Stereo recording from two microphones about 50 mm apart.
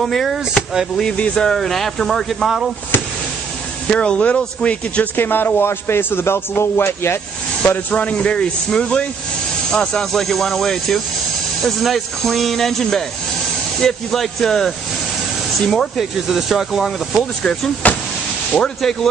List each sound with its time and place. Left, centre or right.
0.0 s speech: centre
1.1 s speech: left
1.4 s speech: centre
3.9 s speech: centre
5.1 s a man's voice: left
7.9 s speech: left
10.1 s speech: centre
16.0 s speech: centre
17.8 s speech: left
18.5 s speech: centre